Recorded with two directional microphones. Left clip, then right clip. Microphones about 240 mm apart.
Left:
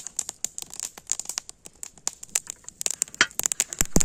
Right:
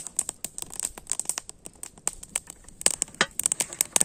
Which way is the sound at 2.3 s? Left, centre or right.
Left.